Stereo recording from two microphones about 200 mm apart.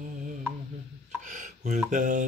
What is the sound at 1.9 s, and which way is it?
Mantra, 40° right (ahead or behind).